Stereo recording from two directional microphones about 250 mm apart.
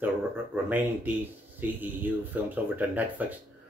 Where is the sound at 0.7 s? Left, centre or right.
Centre.